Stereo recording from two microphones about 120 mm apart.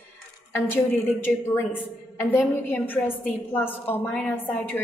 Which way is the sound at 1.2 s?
20° left (ahead or behind).